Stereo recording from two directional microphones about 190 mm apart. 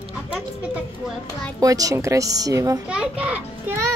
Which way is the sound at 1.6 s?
20° right (ahead or behind).